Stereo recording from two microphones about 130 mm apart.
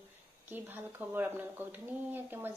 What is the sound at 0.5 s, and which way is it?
Speech, 15° right (ahead or behind).